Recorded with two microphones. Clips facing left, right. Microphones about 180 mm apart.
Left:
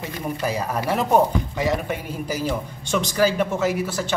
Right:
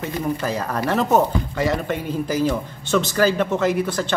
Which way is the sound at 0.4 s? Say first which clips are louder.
Right 1 dB; 10° left (ahead or behind).